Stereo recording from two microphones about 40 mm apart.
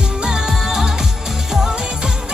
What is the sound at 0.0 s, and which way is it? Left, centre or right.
Music, centre.